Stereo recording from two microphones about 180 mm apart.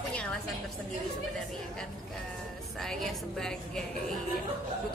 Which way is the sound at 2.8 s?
5° left (ahead or behind).